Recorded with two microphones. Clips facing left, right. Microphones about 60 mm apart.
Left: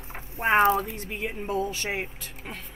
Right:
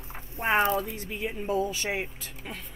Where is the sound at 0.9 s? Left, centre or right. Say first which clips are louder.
Left 1 dB; left.